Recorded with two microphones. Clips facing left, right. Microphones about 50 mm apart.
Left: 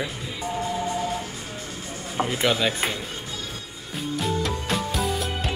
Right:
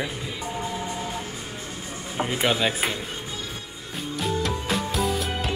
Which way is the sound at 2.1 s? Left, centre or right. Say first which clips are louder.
Left 1 dB; centre.